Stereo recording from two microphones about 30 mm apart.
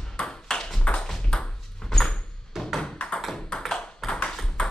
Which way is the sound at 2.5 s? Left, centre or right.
Centre.